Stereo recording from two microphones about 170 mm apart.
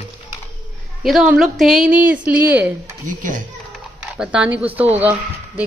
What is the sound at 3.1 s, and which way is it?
Speech, 50° right (ahead or behind).